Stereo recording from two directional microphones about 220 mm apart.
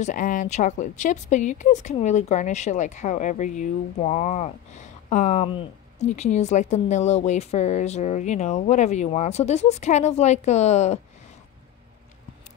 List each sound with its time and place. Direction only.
0.0 s speech: 35° left (ahead or behind)